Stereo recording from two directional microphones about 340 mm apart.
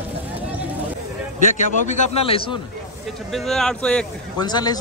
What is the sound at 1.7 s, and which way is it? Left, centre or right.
Speech, left.